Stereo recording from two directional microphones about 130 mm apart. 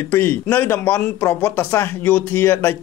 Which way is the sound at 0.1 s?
15° left (ahead or behind).